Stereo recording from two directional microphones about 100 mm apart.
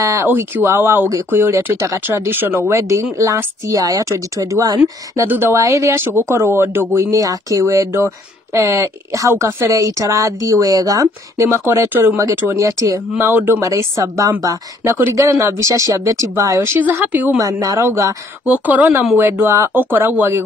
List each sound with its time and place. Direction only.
0.0 s speech: 30° right (ahead or behind)
2.8 s speech: 35° right (ahead or behind)
5.2 s speech: 25° right (ahead or behind)
7.1 s speech: 35° right (ahead or behind)
16.8 s speech: 20° right (ahead or behind)
17.4 s speech: 35° right (ahead or behind)
18.5 s speech: 15° right (ahead or behind)